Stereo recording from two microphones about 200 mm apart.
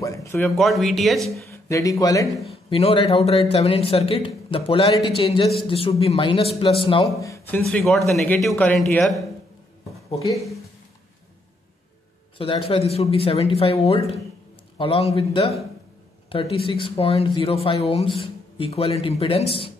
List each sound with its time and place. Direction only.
0.0 s a sound: 15° left (ahead or behind)
0.6 s speech: centre (ahead or behind)
1.5 s speech: 15° left (ahead or behind)
2.2 s speech: centre (ahead or behind)
2.7 s speech: 30° left (ahead or behind)
7.6 s speech: centre (ahead or behind)
10.3 s speech: centre (ahead or behind)
12.4 s speech: 25° left (ahead or behind)